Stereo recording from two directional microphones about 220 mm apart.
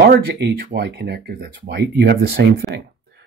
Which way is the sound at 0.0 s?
45° right (ahead or behind).